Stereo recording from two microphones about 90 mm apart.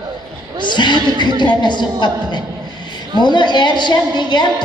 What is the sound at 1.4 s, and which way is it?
A woman's voice, 55° left (ahead or behind).